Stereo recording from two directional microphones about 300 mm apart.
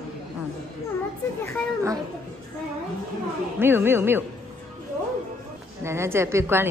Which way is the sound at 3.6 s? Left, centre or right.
Centre.